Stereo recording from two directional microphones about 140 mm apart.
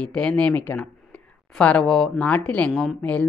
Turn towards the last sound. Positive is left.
turn(degrees=10)  # may be behind; listen again after turning